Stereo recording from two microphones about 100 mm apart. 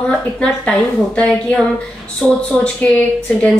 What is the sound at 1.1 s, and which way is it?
A woman's voice, 10° left (ahead or behind).